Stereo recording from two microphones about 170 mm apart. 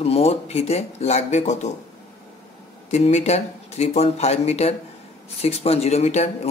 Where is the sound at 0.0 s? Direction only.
35° left (ahead or behind).